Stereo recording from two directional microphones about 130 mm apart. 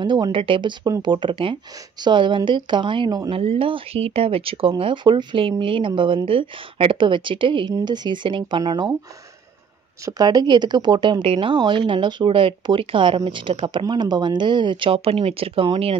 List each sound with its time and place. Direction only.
0.0 s speech: 35° right (ahead or behind)
3.3 s speech: 45° right (ahead or behind)
10.0 s speech: 30° right (ahead or behind)